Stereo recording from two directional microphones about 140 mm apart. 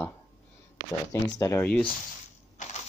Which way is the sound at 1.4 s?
20° left (ahead or behind).